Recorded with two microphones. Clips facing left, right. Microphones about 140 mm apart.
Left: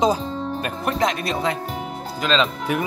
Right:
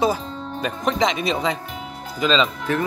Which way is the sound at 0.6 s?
5° left (ahead or behind).